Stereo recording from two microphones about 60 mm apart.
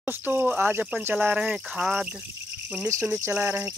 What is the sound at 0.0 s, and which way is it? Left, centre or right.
Speech, right.